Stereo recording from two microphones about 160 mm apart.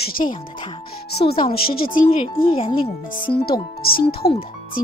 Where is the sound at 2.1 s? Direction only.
35° left (ahead or behind).